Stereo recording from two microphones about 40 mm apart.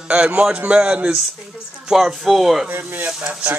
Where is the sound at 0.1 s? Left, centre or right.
Right.